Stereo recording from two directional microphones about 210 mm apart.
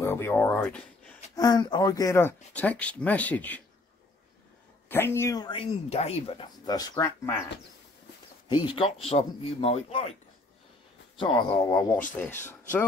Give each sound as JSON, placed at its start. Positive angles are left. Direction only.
{"t": 0.0, "sound": "speech", "side_deg": 10}
{"t": 1.3, "sound": "speech", "side_deg": 20}
{"t": 4.8, "sound": "speech", "side_deg": 10}
{"t": 8.5, "sound": "speech", "side_deg": 25}
{"t": 11.1, "sound": "speech", "side_deg": 25}